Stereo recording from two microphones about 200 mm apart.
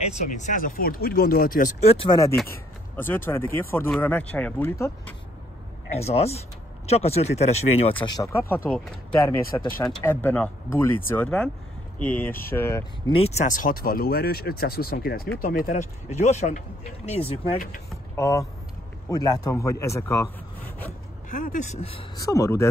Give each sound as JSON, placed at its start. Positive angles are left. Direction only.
{"t": 0.0, "sound": "speech", "side_deg": 35}
{"t": 5.9, "sound": "speech", "side_deg": 30}
{"t": 8.3, "sound": "speech", "side_deg": 10}
{"t": 12.3, "sound": "speech", "side_deg": 45}
{"t": 12.5, "sound": "speech", "side_deg": 15}
{"t": 13.1, "sound": "speech", "side_deg": 35}
{"t": 18.1, "sound": "speech", "side_deg": 15}
{"t": 21.3, "sound": "speech", "side_deg": 40}
{"t": 22.2, "sound": "speech", "side_deg": 15}